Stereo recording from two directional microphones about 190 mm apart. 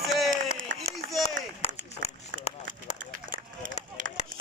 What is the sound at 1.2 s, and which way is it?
Run, 35° left (ahead or behind).